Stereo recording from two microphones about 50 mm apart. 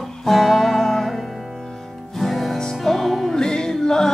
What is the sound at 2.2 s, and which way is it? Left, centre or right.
Music, centre.